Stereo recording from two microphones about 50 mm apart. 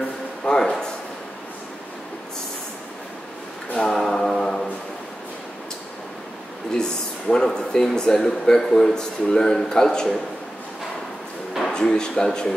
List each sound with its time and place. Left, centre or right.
0.5 s a sound: centre
3.7 s a capella: centre
6.7 s speech: centre
11.7 s speech: centre